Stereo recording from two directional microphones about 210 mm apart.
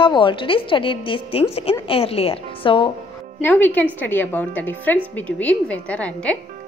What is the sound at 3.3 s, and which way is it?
A woman's voice, 10° left (ahead or behind).